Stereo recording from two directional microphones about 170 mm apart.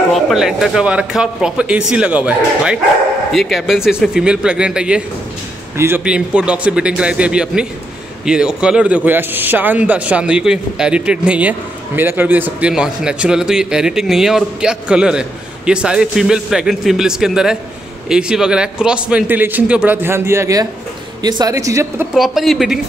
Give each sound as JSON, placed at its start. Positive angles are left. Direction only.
{"t": 0.1, "sound": "a man's voice", "side_deg": 0}
{"t": 22.1, "sound": "a man's voice", "side_deg": 0}